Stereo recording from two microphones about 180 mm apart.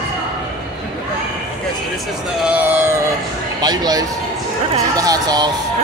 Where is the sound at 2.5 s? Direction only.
10° right (ahead or behind).